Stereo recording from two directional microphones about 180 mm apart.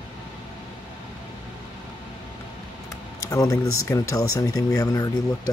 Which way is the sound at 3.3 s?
20° left (ahead or behind).